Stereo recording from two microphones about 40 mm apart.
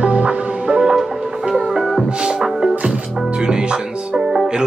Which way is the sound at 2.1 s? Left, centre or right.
Right.